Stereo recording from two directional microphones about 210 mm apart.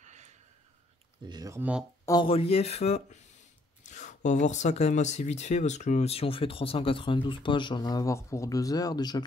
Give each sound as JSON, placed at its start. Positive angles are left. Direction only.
{"t": 0.0, "sound": "a sound", "side_deg": -35}
{"t": 1.2, "sound": "speech", "side_deg": -20}
{"t": 2.0, "sound": "speech", "side_deg": 25}